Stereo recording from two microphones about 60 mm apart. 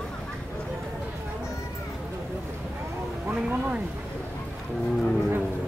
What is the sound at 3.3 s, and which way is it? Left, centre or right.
Speech, centre.